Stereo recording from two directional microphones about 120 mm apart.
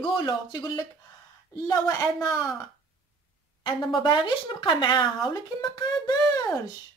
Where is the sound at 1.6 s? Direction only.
30° left (ahead or behind).